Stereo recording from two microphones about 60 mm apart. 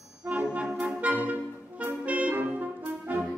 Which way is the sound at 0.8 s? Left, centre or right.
Right.